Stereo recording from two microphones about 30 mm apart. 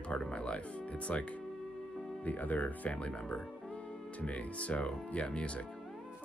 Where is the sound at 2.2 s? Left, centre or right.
Left.